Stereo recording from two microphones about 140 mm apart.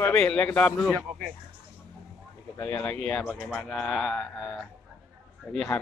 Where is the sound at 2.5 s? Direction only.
10° left (ahead or behind).